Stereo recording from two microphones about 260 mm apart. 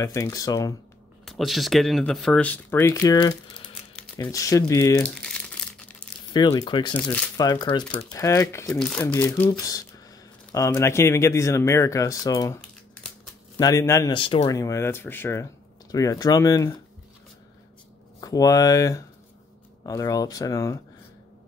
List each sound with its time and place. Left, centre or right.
0.0 s speech: centre
1.2 s speech: centre
6.3 s speech: centre
7.0 s speech: centre
13.6 s speech: centre
18.2 s speech: centre